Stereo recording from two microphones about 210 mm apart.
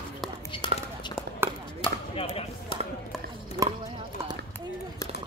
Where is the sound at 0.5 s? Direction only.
20° left (ahead or behind).